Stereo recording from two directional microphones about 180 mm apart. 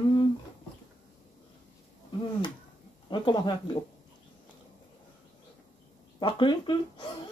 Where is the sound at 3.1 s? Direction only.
25° left (ahead or behind).